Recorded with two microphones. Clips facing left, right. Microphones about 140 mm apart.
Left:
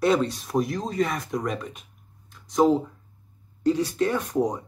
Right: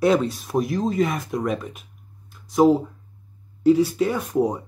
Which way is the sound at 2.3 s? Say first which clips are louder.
Right 3 dB; 5° right (ahead or behind).